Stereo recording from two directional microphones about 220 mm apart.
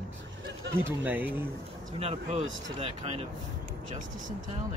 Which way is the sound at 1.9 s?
25° right (ahead or behind).